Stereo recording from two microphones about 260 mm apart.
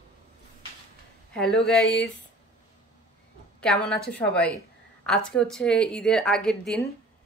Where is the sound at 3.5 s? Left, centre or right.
Centre.